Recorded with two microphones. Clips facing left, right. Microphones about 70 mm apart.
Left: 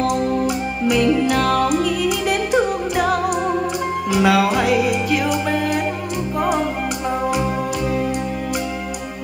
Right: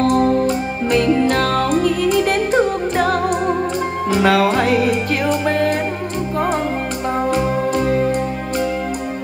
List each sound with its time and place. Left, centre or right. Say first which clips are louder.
0.0 s music: right 4 dB; right
7.3 s music: right 4 dB; right